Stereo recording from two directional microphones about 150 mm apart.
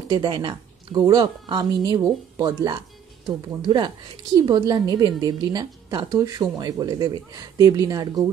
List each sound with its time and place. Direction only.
0.1 s speech: 30° right (ahead or behind)